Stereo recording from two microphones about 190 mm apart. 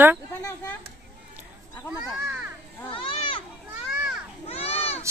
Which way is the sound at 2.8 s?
25° left (ahead or behind).